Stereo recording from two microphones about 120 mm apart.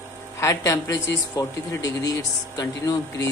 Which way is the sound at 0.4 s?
25° left (ahead or behind).